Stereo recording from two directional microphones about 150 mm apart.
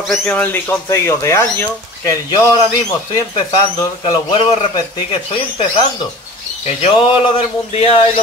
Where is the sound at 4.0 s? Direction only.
35° left (ahead or behind).